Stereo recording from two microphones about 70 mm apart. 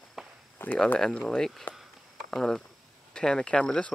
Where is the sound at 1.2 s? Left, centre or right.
Centre.